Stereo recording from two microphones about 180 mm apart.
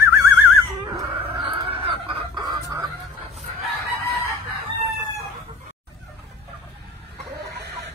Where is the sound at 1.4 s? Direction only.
30° right (ahead or behind).